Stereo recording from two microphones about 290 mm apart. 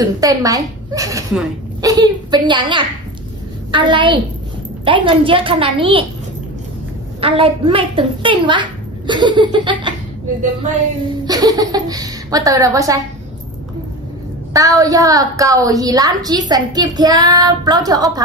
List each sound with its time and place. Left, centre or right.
0.0 s a woman's voice: centre
7.2 s a woman's voice: centre
11.2 s a woman's voice: centre
14.5 s a woman's voice: centre